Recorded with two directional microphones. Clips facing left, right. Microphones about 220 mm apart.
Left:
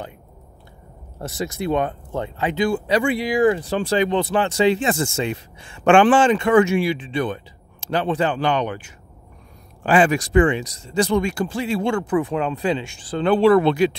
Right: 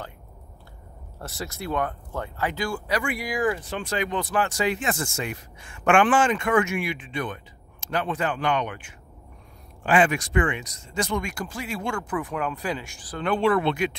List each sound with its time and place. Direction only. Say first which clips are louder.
1.2 s speech: left 8 dB; 20° left (ahead or behind); by 13.9 s 35° left (ahead or behind)